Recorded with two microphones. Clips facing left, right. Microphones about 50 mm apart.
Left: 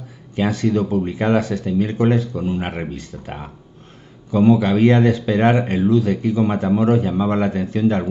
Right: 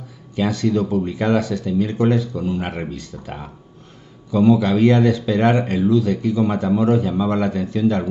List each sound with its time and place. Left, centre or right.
0.4 s speech: left